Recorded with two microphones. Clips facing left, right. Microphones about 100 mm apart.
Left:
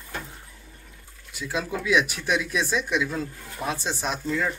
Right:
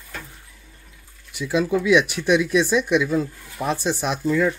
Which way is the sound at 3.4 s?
30° left (ahead or behind).